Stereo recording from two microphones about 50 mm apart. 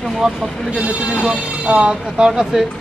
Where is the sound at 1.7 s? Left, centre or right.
Centre.